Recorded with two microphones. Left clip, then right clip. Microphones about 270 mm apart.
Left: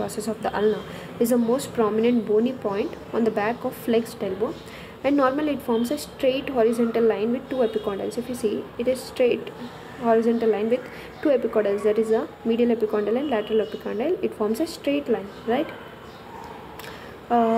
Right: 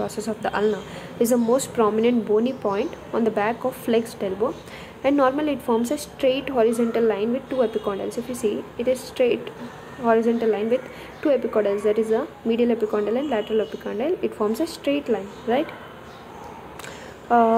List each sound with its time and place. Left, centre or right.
0.2 s a woman's voice: centre
1.2 s a woman's voice: centre
8.1 s a woman's voice: left
8.5 s a woman's voice: centre
17.3 s speech: centre